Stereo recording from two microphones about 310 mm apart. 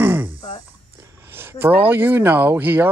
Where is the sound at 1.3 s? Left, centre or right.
Centre.